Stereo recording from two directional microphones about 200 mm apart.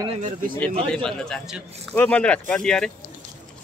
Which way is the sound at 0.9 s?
5° left (ahead or behind).